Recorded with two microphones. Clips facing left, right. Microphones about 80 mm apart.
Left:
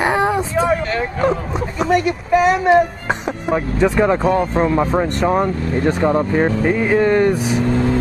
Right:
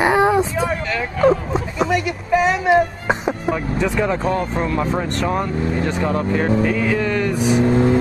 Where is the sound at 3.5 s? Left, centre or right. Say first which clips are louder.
Left 7 dB; left.